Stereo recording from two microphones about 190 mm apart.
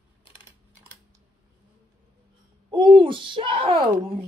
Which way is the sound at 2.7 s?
25° right (ahead or behind).